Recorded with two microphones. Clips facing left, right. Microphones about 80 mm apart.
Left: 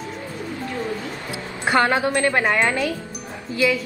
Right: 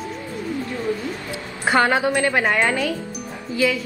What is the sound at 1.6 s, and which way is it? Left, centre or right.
Speech, right.